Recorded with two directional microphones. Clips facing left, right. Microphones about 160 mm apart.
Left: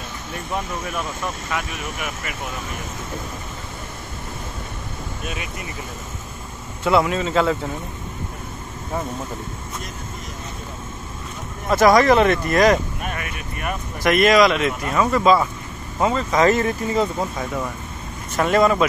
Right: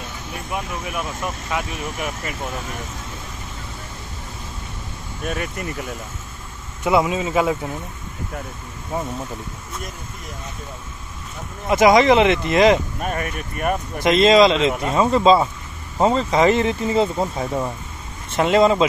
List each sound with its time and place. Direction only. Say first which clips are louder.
0.5 s speech: left 1 dB; 10° right (ahead or behind)
5.2 s speech: right 7 dB; 50° right (ahead or behind)
6.8 s speech: even; 15° right (ahead or behind)
11.7 s speech: right 1 dB; 20° right (ahead or behind)
13.0 s speech: right 4 dB; 40° right (ahead or behind)
14.0 s speech: right 2 dB; 20° right (ahead or behind)